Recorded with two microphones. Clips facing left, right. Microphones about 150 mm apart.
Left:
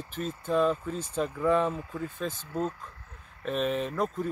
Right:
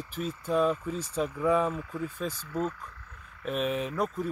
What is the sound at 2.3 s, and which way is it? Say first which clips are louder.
Speech: left 1 dB; 30° left (ahead or behind).